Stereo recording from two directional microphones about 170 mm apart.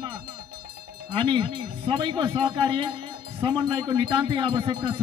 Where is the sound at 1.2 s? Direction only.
30° right (ahead or behind).